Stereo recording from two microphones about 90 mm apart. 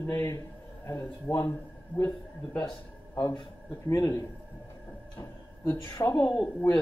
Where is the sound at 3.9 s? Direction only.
40° left (ahead or behind).